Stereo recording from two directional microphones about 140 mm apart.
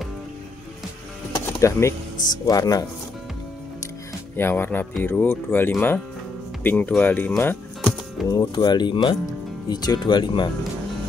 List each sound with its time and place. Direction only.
1.3 s music: 20° left (ahead or behind)
2.4 s speech: 25° left (ahead or behind)
4.4 s speech: 15° left (ahead or behind)
8.3 s speech: 30° left (ahead or behind)